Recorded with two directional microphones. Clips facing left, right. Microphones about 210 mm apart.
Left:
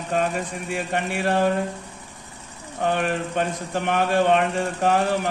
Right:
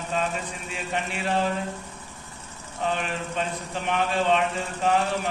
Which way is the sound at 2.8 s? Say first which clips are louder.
Left 5 dB; 55° left (ahead or behind).